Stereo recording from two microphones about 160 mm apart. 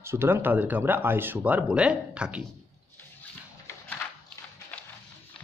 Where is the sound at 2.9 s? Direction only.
10° left (ahead or behind).